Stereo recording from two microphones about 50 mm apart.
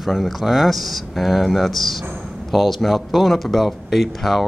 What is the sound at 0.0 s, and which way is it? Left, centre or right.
Speech, centre.